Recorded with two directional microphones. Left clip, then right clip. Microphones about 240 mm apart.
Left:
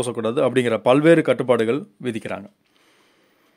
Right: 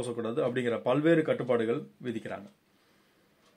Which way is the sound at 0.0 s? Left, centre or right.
Left.